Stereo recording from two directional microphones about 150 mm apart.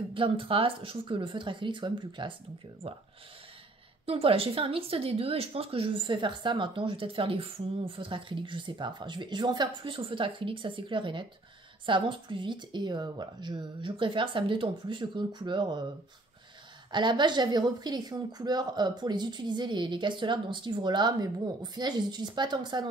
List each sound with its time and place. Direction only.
0.1 s speech: 35° right (ahead or behind)
4.0 s speech: 40° right (ahead or behind)
16.9 s a woman's voice: 30° right (ahead or behind)